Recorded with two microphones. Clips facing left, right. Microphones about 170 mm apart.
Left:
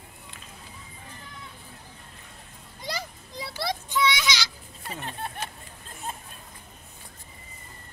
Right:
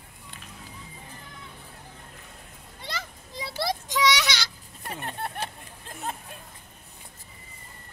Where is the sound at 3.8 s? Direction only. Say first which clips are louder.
Even; 85° right; by 5.3 s 60° right (ahead or behind).